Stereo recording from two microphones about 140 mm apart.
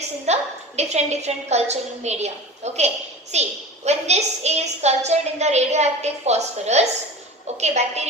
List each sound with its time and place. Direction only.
0.3 s a woman's voice: 50° right (ahead or behind)